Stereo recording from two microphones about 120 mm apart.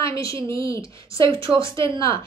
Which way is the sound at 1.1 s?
45° right (ahead or behind).